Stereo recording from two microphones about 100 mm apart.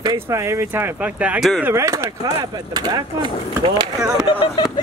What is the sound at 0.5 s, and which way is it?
Speech, 25° right (ahead or behind).